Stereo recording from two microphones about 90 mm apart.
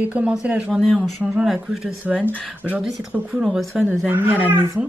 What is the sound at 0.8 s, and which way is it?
Speech, centre (ahead or behind).